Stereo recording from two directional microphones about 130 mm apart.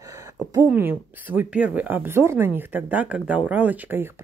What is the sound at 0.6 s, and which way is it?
Speech, 15° right (ahead or behind).